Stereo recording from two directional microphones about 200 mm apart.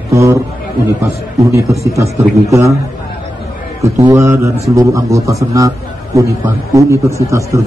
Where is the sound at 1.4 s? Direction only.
15° right (ahead or behind).